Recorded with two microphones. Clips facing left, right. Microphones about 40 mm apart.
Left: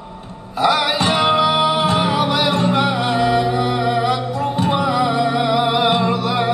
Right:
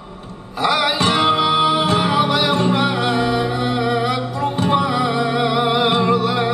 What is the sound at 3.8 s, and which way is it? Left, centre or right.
Music, centre.